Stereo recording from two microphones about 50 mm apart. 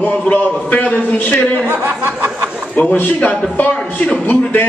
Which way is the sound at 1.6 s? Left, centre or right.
Right.